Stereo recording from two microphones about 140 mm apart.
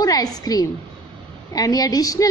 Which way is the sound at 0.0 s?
25° left (ahead or behind).